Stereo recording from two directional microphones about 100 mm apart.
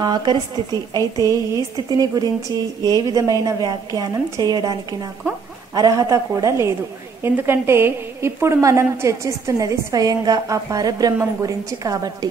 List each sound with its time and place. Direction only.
0.0 s a woman's voice: 45° right (ahead or behind)
5.8 s a woman's voice: 35° right (ahead or behind)